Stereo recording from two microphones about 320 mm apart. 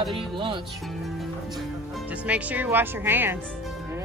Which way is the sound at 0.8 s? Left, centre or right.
Centre.